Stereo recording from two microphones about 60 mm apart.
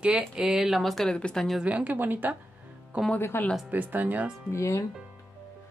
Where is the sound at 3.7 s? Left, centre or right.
Right.